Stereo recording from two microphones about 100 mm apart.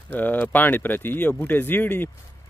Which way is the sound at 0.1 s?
15° left (ahead or behind).